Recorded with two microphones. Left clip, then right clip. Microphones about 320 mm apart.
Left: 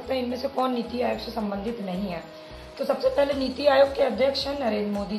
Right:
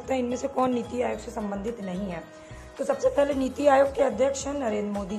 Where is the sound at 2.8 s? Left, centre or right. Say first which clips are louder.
Left 1 dB; right.